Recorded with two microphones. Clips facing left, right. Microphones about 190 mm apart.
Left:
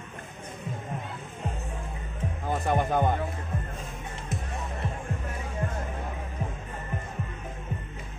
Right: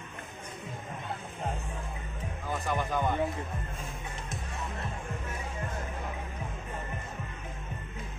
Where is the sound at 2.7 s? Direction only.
55° left (ahead or behind).